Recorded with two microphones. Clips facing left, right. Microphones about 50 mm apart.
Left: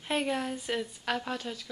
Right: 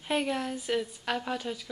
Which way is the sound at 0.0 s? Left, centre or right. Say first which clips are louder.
Right 1 dB; centre.